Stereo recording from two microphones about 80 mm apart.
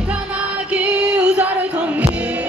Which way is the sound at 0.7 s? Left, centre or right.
Centre.